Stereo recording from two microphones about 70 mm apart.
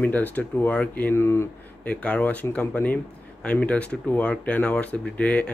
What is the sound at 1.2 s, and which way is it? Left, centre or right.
Speech, left.